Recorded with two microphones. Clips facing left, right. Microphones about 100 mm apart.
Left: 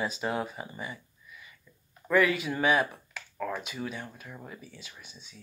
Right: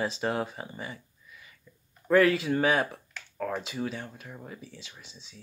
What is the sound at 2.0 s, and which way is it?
Speech, 40° right (ahead or behind).